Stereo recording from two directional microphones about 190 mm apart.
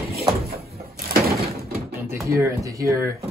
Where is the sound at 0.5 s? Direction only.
55° right (ahead or behind).